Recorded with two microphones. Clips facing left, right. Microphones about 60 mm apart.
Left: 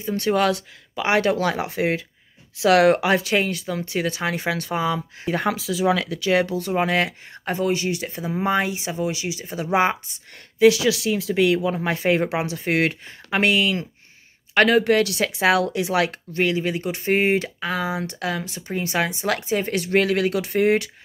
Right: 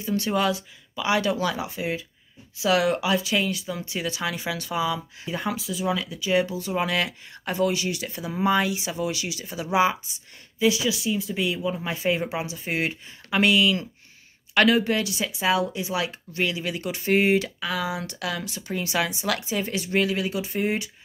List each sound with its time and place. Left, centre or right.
0.0 s speech: left
0.5 s speech: left
1.0 s speech: left
9.6 s speech: left
10.6 s speech: left
13.3 s speech: left
16.3 s speech: left
19.8 s speech: left